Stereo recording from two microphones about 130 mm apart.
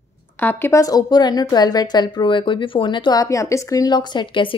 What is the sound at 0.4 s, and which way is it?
A woman's voice, 15° left (ahead or behind).